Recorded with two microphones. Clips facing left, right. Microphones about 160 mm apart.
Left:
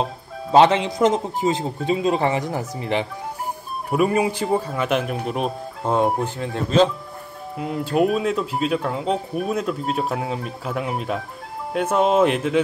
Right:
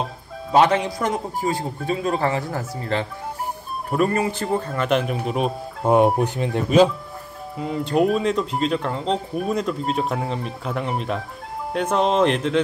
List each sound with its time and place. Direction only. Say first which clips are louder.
0.5 s a man's voice: left 2 dB; 25° left (ahead or behind); by 5.9 s centre (ahead or behind)
5.9 s speech: right 4 dB; 15° right (ahead or behind)
7.5 s speech: even; 5° left (ahead or behind)